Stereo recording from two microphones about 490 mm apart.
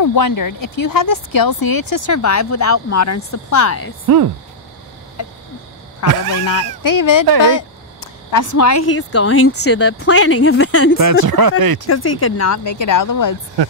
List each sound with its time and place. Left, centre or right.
0.0 s speech: left
4.0 s speech: right
6.0 s speech: left
11.0 s speech: right
11.9 s speech: left